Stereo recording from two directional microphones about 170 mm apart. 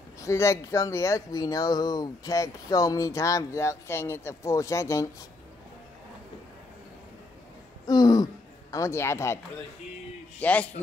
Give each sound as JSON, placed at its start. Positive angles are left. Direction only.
{"t": 0.2, "sound": "speech", "side_deg": 15}
{"t": 7.8, "sound": "throat clearing", "side_deg": 25}
{"t": 8.7, "sound": "speech", "side_deg": 15}
{"t": 10.4, "sound": "speech", "side_deg": 10}